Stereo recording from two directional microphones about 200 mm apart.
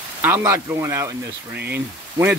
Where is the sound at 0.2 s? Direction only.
10° right (ahead or behind).